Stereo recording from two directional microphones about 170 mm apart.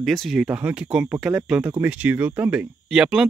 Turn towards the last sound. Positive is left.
turn(degrees=-5)  # may be behind; listen again after turning